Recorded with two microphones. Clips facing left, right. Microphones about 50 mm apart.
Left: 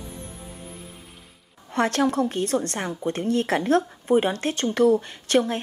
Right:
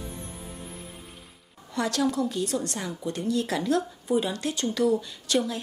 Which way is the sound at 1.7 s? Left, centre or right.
Left.